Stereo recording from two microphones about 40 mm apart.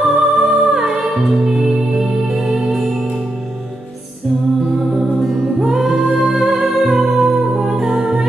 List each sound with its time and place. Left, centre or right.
0.0 s music: centre
0.8 s music: centre
5.6 s music: centre